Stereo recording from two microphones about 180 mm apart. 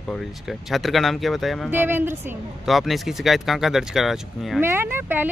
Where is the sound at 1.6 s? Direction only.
10° right (ahead or behind).